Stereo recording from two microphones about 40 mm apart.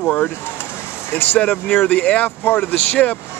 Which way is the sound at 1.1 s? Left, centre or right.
Left.